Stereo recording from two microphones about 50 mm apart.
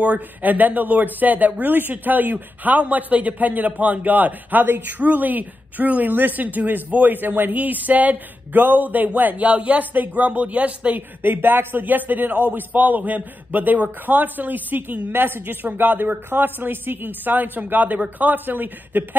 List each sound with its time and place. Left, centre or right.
0.0 s a woman's voice: right
11.0 s a woman's voice: right